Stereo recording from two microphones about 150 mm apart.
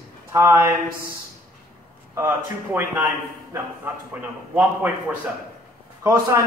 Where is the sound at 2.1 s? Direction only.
15° right (ahead or behind).